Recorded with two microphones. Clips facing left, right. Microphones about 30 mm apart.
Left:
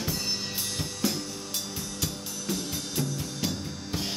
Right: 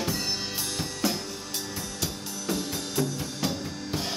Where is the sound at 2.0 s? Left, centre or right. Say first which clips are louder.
Right 1 dB; centre.